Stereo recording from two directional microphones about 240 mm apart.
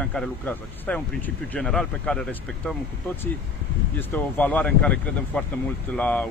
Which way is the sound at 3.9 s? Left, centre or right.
Centre.